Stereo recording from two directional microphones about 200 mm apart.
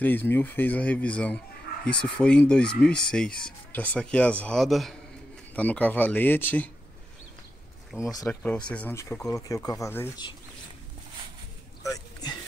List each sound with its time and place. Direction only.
0.0 s speech: 10° left (ahead or behind)
8.0 s speech: 15° left (ahead or behind)
8.5 s speech: 5° left (ahead or behind)
11.8 s a sound: 20° left (ahead or behind)